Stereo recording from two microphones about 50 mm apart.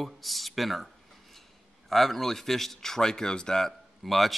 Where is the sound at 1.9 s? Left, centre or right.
Centre.